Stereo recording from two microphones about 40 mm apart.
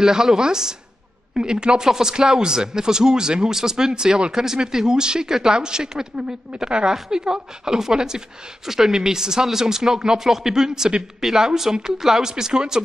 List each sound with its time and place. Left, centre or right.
0.0 s a woman's voice: centre